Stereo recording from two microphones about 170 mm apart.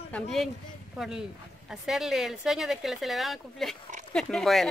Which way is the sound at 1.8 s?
Centre (ahead or behind).